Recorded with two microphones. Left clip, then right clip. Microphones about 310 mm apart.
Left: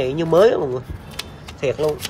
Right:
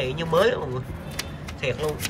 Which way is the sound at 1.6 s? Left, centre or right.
Left.